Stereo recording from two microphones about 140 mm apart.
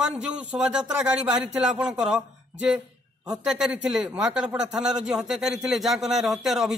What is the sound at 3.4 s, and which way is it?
Speech, 5° right (ahead or behind).